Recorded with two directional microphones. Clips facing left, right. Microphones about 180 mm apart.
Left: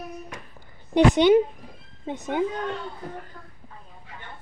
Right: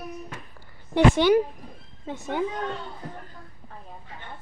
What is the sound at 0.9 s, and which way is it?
A woman's voice, 20° left (ahead or behind).